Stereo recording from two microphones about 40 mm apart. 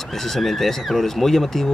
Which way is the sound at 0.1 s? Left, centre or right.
Centre.